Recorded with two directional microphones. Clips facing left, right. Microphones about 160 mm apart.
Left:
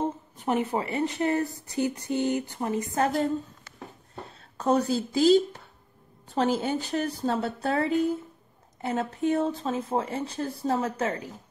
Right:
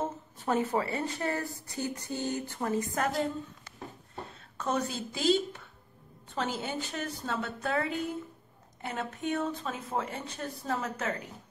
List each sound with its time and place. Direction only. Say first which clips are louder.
0.0 s a woman's voice: left 5 dB; 20° left (ahead or behind)
4.6 s speech: left 8 dB; 35° left (ahead or behind)